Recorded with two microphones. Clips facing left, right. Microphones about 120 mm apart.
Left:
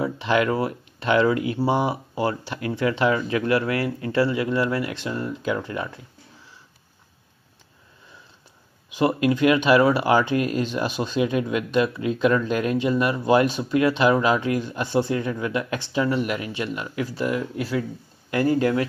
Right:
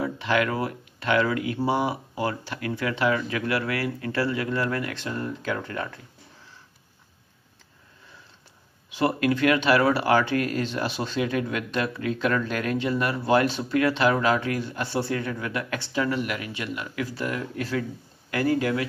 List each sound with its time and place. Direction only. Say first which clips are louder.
0.0 s speech: left 3 dB; 25° left (ahead or behind)
8.9 s speech: left 3 dB; 15° left (ahead or behind)
17.0 s speech: left 5 dB; 15° left (ahead or behind)